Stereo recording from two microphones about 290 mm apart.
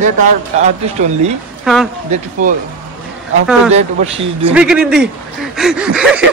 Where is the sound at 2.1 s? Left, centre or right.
Right.